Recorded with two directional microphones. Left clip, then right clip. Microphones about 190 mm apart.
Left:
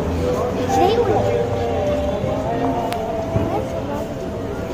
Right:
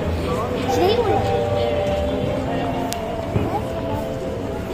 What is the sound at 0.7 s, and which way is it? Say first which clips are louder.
Music: left 2 dB; 20° left (ahead or behind).